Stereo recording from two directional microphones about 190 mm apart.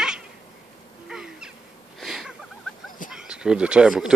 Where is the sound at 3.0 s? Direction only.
5° right (ahead or behind).